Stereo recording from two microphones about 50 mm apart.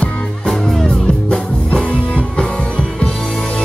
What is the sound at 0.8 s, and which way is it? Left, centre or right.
Music, centre.